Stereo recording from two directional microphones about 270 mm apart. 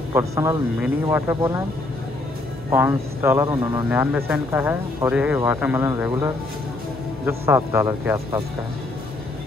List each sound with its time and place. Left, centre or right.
0.1 s speech: centre
2.7 s speech: centre